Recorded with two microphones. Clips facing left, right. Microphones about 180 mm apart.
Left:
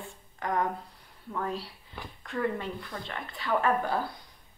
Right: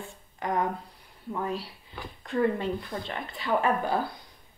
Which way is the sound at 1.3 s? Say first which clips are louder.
Right 2 dB; 15° right (ahead or behind).